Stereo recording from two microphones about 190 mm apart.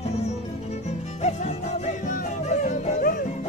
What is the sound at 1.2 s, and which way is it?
Yodeling, 35° left (ahead or behind).